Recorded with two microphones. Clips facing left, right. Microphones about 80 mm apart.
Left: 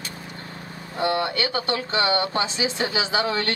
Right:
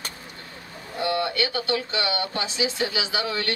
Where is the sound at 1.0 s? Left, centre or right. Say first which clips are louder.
Left 1 dB; left.